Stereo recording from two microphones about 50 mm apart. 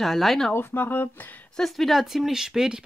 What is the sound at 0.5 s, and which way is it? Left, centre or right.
Speech, left.